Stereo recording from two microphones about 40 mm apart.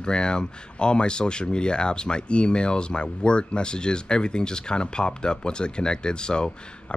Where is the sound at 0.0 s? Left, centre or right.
Left.